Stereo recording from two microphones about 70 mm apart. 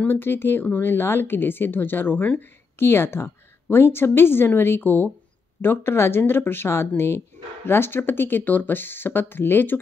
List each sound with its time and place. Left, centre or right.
0.0 s speech: left